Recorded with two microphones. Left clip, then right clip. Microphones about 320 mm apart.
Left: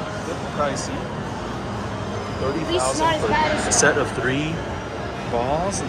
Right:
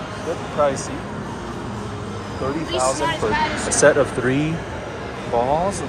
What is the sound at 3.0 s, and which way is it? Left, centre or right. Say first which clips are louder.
Speech: left 1 dB; left.